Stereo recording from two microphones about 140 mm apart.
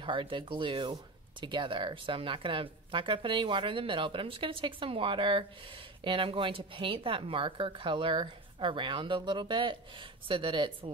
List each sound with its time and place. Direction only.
0.0 s speech: 35° right (ahead or behind)